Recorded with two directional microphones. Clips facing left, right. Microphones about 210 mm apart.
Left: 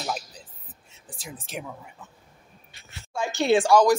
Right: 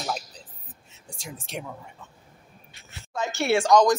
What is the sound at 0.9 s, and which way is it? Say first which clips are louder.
Speech: even; centre (ahead or behind).